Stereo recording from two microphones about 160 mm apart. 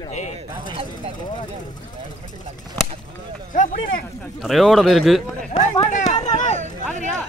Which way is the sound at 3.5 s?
55° left (ahead or behind).